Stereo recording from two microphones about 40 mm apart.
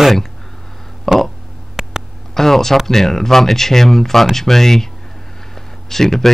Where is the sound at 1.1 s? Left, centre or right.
Centre.